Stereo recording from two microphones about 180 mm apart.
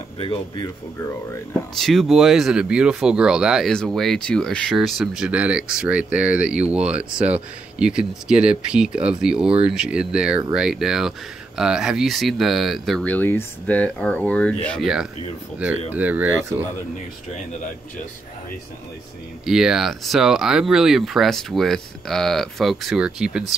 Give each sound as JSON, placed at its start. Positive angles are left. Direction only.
{"t": 0.2, "sound": "speech", "side_deg": 25}
{"t": 1.8, "sound": "speech", "side_deg": 0}
{"t": 19.4, "sound": "speech", "side_deg": -5}